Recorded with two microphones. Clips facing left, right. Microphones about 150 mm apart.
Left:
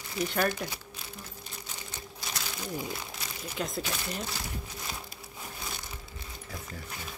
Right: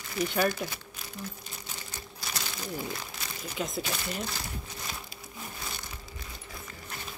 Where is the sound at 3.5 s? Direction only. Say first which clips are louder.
Right 1 dB; centre (ahead or behind).